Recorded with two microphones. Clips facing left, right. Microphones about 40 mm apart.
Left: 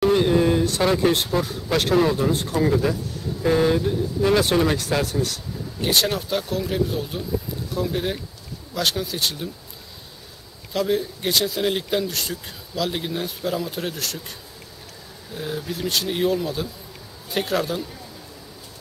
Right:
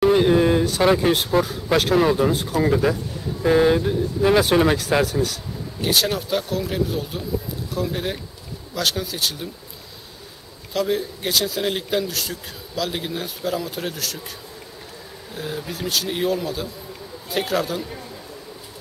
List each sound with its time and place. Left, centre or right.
0.0 s a sound: centre
0.7 s speech: centre
2.7 s speech: centre
10.7 s speech: centre
15.3 s speech: centre